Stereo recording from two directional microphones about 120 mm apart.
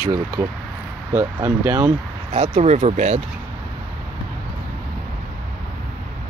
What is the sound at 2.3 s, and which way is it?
Speech, 65° right (ahead or behind).